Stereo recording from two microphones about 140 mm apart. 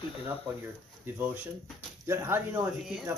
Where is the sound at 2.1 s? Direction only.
20° right (ahead or behind).